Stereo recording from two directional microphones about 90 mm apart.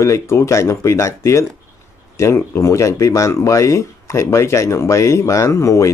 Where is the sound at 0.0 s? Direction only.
35° left (ahead or behind).